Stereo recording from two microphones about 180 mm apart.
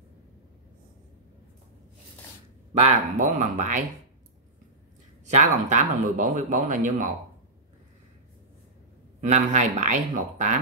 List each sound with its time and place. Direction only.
2.8 s speech: 40° right (ahead or behind)
5.2 s speech: 40° right (ahead or behind)
9.2 s speech: 45° right (ahead or behind)